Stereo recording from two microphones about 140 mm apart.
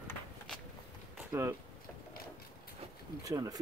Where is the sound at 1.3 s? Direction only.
20° right (ahead or behind).